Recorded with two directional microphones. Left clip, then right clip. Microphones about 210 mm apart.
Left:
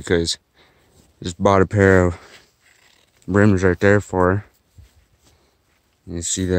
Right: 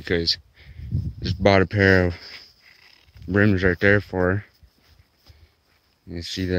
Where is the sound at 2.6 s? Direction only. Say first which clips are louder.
Right 3 dB; 20° right (ahead or behind).